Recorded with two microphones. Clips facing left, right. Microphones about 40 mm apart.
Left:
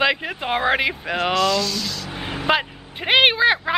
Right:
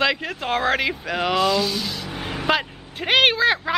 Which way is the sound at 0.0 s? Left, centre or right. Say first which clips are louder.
Left 1 dB; centre.